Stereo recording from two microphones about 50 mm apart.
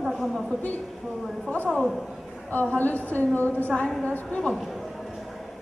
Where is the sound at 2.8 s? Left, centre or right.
Left.